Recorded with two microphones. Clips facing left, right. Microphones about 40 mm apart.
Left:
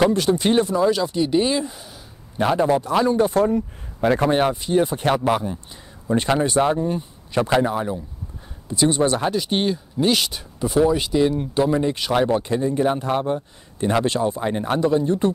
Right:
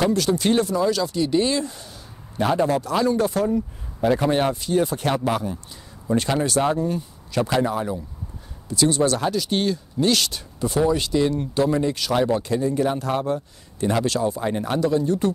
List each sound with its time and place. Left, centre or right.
0.0 s speech: centre
3.3 s speech: left
4.3 s speech: centre